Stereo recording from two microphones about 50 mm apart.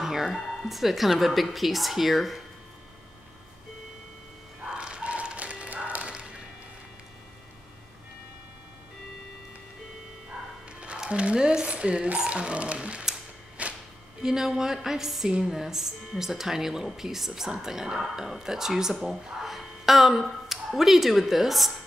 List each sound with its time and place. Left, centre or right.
0.0 s speech: centre
4.6 s a sound: centre
10.8 s speech: right
13.6 s music: right
14.2 s a woman's voice: centre